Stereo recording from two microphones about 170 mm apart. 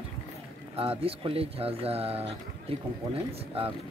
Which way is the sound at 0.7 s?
35° right (ahead or behind).